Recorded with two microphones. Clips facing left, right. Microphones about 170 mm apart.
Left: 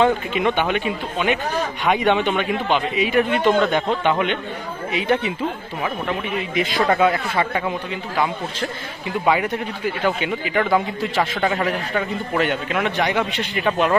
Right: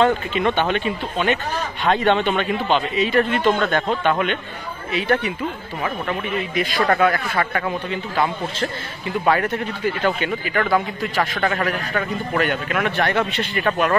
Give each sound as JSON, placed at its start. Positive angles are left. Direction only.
{"t": 0.0, "sound": "a man's voice", "side_deg": 15}
{"t": 6.3, "sound": "a man's voice", "side_deg": 20}